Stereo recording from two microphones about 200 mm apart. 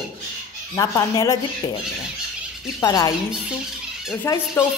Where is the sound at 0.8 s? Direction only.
15° left (ahead or behind).